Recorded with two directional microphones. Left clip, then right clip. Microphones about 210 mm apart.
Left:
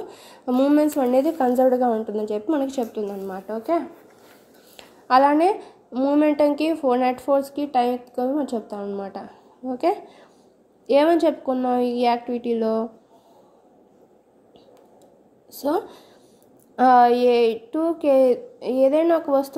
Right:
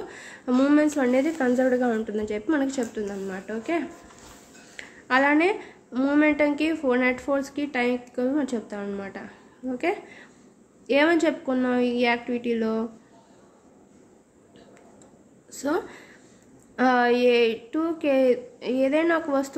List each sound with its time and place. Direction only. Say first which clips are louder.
0.1 s a woman's voice: left 1 dB; 10° left (ahead or behind)
5.0 s a woman's voice: left 4 dB; 15° left (ahead or behind)
10.9 s a woman's voice: left 4 dB; 15° left (ahead or behind)
15.5 s a woman's voice: left 3 dB; 15° left (ahead or behind)